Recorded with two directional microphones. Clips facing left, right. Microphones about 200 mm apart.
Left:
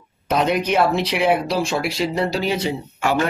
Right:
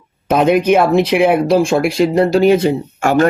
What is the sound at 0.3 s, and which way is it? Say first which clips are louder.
Speech: right 8 dB; 50° right (ahead or behind).